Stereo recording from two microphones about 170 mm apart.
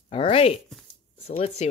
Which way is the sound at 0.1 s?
35° left (ahead or behind).